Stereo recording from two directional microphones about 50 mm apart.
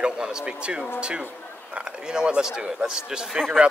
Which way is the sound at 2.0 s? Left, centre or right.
Centre.